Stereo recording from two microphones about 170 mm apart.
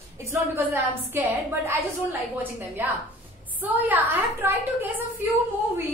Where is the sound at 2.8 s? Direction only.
10° right (ahead or behind).